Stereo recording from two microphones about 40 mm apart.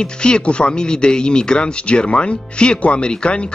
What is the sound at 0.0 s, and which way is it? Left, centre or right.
A man's voice, left.